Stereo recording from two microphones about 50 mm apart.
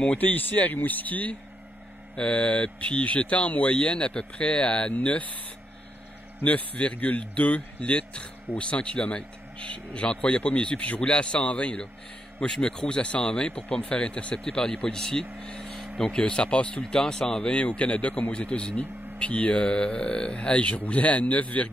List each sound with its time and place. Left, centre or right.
0.2 s speech: left
2.1 s speech: centre
6.4 s speech: left; by 15.2 s centre
15.4 s vehicle: centre
16.0 s speech: left